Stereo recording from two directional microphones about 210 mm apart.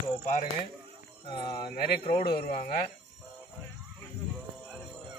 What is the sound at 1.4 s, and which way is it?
Speech, 20° left (ahead or behind).